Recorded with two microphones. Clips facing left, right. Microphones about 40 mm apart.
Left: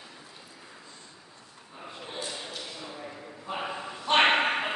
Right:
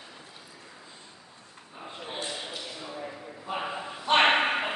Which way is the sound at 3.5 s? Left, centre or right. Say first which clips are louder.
Right 1 dB; centre.